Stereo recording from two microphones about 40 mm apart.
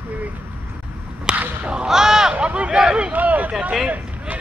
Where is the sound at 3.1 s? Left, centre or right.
Right.